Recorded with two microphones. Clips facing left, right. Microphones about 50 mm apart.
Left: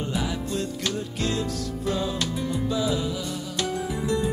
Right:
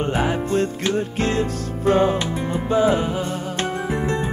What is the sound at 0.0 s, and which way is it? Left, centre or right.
Music, right.